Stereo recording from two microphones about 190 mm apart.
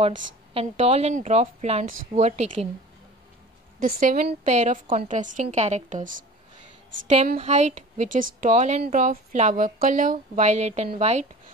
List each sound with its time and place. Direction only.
0.6 s a woman's voice: 30° right (ahead or behind)
3.8 s a woman's voice: 50° right (ahead or behind)
7.3 s a woman's voice: 35° right (ahead or behind)